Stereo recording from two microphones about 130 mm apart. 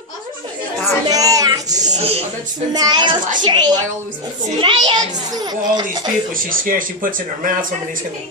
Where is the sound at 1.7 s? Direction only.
65° right (ahead or behind).